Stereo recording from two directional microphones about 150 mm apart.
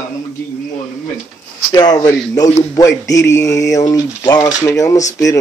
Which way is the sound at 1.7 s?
25° left (ahead or behind).